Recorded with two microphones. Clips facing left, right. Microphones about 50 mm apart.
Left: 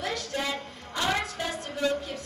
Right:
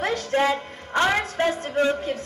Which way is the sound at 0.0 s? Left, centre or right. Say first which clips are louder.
Right 9 dB; right.